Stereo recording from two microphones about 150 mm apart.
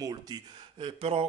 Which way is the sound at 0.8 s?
40° right (ahead or behind).